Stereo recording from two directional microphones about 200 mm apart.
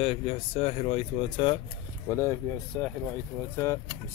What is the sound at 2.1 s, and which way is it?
Speech, 15° left (ahead or behind).